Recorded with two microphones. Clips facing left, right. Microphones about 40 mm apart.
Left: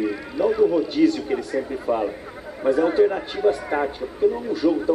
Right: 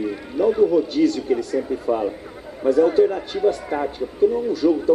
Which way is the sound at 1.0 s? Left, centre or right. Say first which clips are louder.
Left 2 dB; left.